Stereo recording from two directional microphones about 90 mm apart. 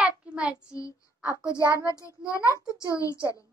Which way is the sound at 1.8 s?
35° left (ahead or behind).